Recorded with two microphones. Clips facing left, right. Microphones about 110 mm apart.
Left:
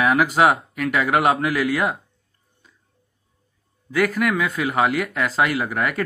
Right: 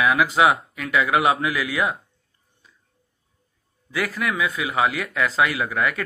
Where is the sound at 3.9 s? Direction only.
50° left (ahead or behind).